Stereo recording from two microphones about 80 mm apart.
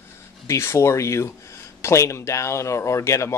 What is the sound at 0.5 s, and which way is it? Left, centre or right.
Speech, left.